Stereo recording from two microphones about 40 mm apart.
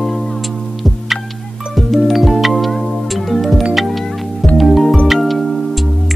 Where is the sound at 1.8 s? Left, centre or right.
Centre.